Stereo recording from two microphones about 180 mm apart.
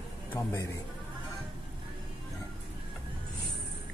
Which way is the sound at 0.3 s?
15° left (ahead or behind).